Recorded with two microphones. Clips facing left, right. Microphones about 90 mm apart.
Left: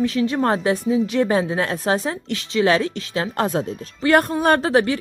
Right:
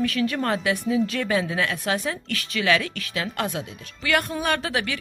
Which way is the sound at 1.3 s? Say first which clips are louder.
Left 4 dB; 35° left (ahead or behind).